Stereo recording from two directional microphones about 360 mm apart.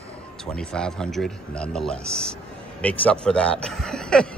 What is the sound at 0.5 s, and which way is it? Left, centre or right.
Speech, centre.